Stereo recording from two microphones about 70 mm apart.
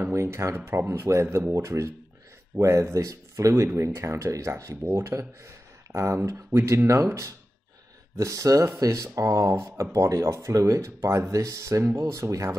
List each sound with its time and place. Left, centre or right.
0.1 s speech: right
8.2 s speech: right